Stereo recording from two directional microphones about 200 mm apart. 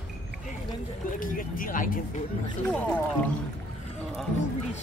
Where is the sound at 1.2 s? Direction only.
45° left (ahead or behind).